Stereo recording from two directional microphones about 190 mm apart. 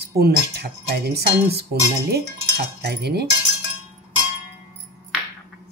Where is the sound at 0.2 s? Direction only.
60° right (ahead or behind).